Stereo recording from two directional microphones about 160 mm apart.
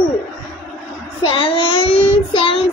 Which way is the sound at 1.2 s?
30° left (ahead or behind).